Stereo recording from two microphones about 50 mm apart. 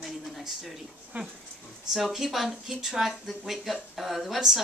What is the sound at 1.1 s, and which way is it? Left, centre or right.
Dog, right.